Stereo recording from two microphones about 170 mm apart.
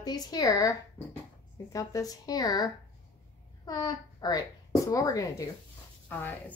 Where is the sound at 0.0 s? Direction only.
25° left (ahead or behind).